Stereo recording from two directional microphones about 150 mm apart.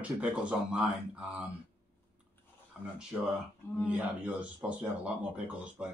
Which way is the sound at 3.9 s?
10° right (ahead or behind).